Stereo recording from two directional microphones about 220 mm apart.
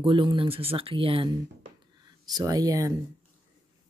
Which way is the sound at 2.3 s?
15° right (ahead or behind).